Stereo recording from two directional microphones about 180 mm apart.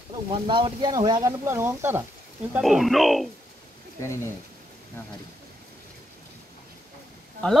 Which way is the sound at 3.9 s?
15° left (ahead or behind).